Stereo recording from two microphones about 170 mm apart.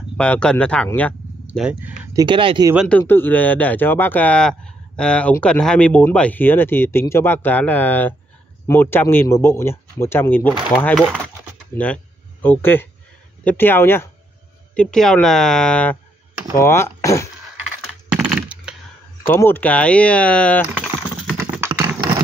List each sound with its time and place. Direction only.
0.2 s speech: 5° left (ahead or behind)
1.6 s speech: 10° right (ahead or behind)
2.1 s speech: 30° right (ahead or behind)
2.9 s speech: 10° left (ahead or behind)
11.7 s speech: 10° left (ahead or behind)
18.1 s computer keyboard: 10° right (ahead or behind)
19.2 s speech: 15° left (ahead or behind)
20.8 s typing: 5° right (ahead or behind)